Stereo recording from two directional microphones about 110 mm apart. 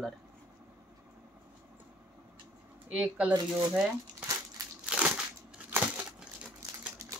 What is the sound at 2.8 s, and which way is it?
Speech, 10° right (ahead or behind).